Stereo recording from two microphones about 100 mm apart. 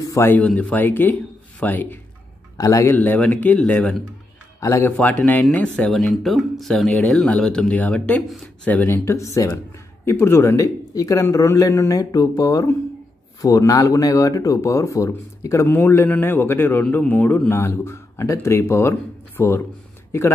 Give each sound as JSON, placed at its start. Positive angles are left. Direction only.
{"t": 0.0, "sound": "speech", "side_deg": 30}
{"t": 0.3, "sound": "speech", "side_deg": 15}
{"t": 2.5, "sound": "a man's voice", "side_deg": 35}
{"t": 2.9, "sound": "speech", "side_deg": 15}
{"t": 4.6, "sound": "a man's voice", "side_deg": 30}
{"t": 4.9, "sound": "speech", "side_deg": 15}
{"t": 5.9, "sound": "a man's voice", "side_deg": 0}
{"t": 17.6, "sound": "speech", "side_deg": 25}